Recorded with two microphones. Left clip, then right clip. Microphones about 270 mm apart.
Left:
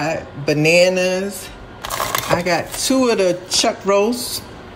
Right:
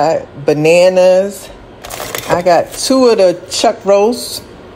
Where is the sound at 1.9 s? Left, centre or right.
Centre.